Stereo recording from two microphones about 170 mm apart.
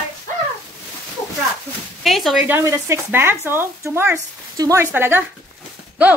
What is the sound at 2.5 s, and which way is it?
Speech, 15° right (ahead or behind).